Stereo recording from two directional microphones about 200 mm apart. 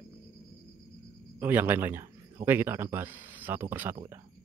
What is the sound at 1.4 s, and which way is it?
Speech, 10° right (ahead or behind).